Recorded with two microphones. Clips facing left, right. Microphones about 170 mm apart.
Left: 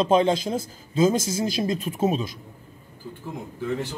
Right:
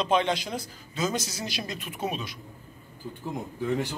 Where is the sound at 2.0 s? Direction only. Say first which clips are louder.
Left 8 dB; 45° left (ahead or behind).